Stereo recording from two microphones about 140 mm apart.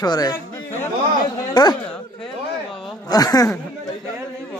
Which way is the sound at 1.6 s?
30° left (ahead or behind).